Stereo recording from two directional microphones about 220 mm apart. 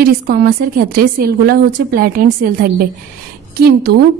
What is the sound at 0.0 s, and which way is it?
A woman's voice, 40° right (ahead or behind).